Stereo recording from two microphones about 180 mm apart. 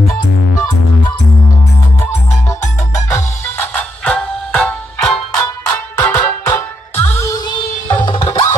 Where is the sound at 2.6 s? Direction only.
15° left (ahead or behind).